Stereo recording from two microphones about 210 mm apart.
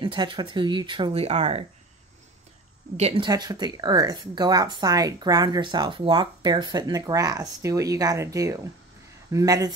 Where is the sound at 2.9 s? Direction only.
25° right (ahead or behind).